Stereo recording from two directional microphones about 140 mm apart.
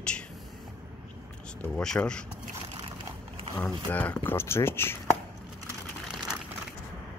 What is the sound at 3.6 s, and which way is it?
Speech, 10° left (ahead or behind).